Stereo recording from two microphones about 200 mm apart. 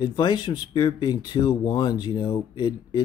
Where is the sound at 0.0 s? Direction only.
25° left (ahead or behind).